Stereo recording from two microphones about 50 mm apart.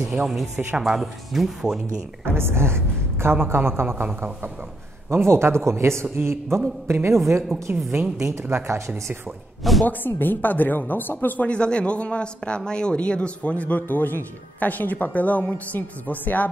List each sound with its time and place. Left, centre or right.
0.7 s speech: centre
2.2 s a woman's voice: right
5.1 s speech: right
9.6 s speech: centre
9.8 s speech: left
11.4 s a man's voice: left